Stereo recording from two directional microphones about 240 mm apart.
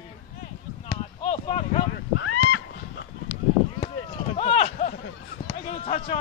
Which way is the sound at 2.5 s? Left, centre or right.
Left.